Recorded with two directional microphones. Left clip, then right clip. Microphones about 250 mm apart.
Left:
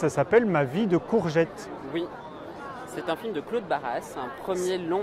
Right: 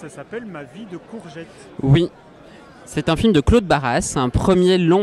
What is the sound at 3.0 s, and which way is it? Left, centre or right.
Speech, right.